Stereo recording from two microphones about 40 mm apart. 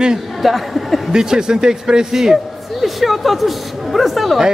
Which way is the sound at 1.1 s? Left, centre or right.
Centre.